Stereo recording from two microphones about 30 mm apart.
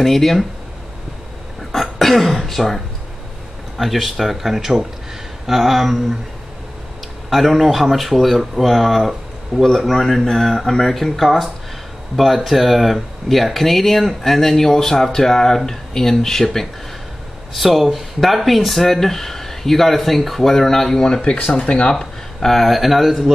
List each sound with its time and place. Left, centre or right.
0.0 s speech: centre
1.7 s speech: centre
3.7 s speech: centre
5.5 s a sound: centre
7.2 s speech: centre
17.6 s speech: centre
21.5 s speech: left
22.4 s speech: centre